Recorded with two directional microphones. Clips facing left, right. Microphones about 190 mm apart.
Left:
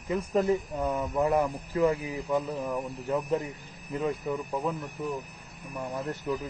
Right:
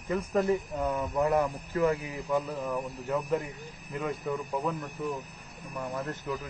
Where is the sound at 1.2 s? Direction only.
25° left (ahead or behind).